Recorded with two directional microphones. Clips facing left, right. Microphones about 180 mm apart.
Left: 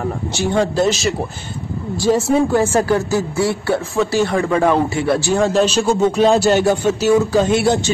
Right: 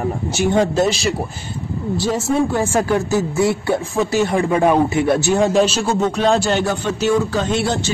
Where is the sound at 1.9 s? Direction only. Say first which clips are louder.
Left 4 dB; 5° right (ahead or behind).